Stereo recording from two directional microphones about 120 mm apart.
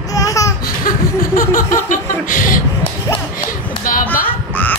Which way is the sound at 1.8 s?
90° left.